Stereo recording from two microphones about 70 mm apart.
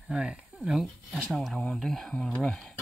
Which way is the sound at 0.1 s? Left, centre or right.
Centre.